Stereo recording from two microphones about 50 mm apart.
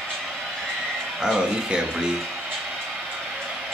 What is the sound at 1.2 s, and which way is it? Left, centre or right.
Speech, centre.